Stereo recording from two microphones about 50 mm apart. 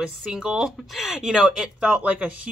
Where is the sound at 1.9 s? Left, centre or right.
Right.